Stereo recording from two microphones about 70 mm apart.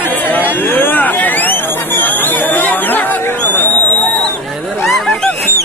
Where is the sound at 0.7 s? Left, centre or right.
Left.